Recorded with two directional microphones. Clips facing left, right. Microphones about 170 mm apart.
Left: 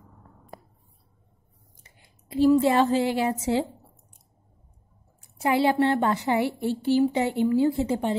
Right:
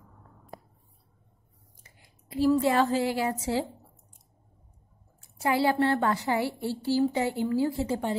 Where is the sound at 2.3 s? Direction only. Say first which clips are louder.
Left 4 dB; 25° left (ahead or behind).